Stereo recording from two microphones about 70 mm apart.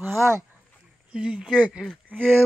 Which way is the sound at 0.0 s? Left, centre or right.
Right.